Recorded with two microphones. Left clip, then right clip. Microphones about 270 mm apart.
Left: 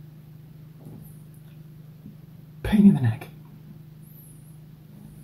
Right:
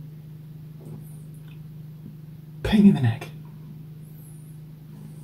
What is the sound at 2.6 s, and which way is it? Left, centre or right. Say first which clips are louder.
Speech: right 1 dB; centre.